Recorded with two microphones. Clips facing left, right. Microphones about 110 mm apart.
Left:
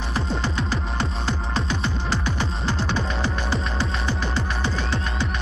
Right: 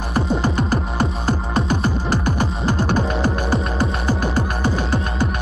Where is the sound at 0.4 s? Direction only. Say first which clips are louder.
Right 6 dB; 50° right (ahead or behind).